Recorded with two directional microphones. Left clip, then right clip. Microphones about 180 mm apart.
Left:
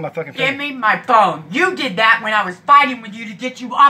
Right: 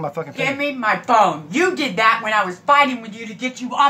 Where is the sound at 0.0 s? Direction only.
15° right (ahead or behind).